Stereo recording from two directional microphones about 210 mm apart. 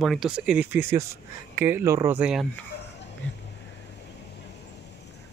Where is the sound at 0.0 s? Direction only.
Centre (ahead or behind).